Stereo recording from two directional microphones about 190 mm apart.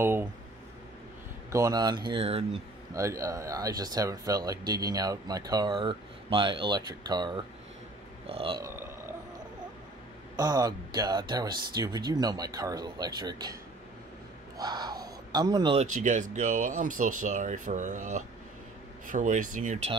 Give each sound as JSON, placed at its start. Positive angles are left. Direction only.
{"t": 0.0, "sound": "speech", "side_deg": -10}
{"t": 1.5, "sound": "speech", "side_deg": -20}
{"t": 2.9, "sound": "speech", "side_deg": -15}
{"t": 10.3, "sound": "speech", "side_deg": -20}
{"t": 14.6, "sound": "speech", "side_deg": -20}
{"t": 15.9, "sound": "speech", "side_deg": -40}